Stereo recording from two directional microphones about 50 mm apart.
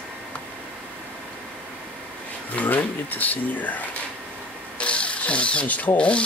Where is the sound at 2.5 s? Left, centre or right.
Left.